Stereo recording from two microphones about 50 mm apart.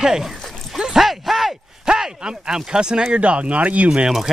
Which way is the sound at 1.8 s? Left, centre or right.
Centre.